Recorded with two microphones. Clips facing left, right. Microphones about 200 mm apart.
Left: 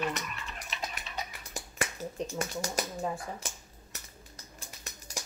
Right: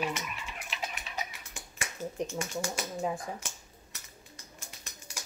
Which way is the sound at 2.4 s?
40° left (ahead or behind).